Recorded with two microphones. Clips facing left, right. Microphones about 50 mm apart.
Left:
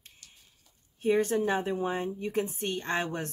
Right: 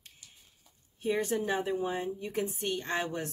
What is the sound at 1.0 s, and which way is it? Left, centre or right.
Speech, left.